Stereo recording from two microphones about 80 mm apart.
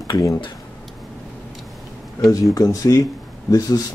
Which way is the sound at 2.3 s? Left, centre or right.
Left.